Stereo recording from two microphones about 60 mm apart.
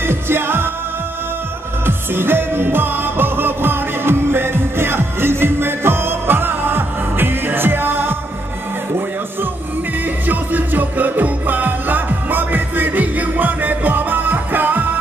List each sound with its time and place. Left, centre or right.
0.0 s music: right
1.9 s music: right
10.2 s music: right